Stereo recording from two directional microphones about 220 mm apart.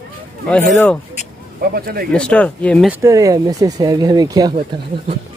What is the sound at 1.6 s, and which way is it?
Speech, 45° right (ahead or behind).